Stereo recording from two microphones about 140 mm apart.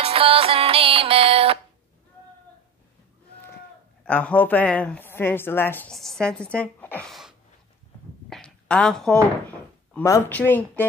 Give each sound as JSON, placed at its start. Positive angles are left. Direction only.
{"t": 0.0, "sound": "music", "side_deg": -40}
{"t": 4.0, "sound": "speech", "side_deg": 10}
{"t": 5.9, "sound": "a woman's voice", "side_deg": 5}
{"t": 7.1, "sound": "sneeze", "side_deg": 0}
{"t": 8.3, "sound": "door", "side_deg": 5}
{"t": 10.0, "sound": "speech", "side_deg": 20}